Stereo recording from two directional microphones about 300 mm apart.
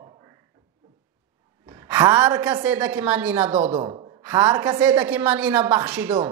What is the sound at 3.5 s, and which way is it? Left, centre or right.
A woman's voice, centre.